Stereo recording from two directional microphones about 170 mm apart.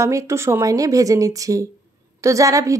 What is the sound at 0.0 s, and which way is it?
A woman's voice, 15° right (ahead or behind).